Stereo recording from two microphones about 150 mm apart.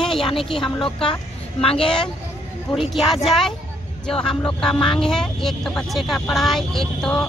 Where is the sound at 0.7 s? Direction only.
30° left (ahead or behind).